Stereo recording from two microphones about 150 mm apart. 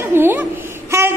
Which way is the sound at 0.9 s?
15° right (ahead or behind).